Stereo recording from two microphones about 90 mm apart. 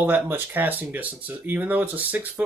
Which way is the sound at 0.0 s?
20° right (ahead or behind).